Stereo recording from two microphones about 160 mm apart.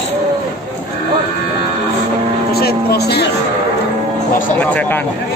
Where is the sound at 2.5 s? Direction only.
85° left.